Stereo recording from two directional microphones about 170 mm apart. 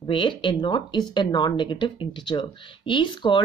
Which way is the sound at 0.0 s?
30° left (ahead or behind).